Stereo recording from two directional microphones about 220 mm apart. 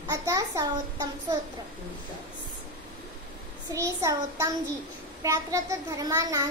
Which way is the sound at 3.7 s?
15° right (ahead or behind).